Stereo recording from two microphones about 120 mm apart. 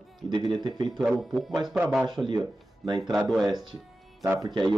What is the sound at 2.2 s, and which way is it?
Speech, 40° right (ahead or behind).